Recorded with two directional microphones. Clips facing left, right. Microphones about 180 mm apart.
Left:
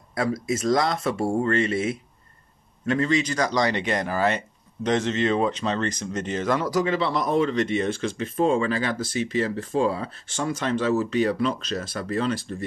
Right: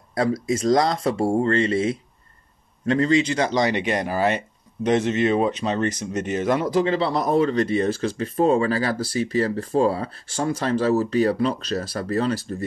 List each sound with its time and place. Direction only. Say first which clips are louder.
0.1 s speech: right 3 dB; 30° right (ahead or behind)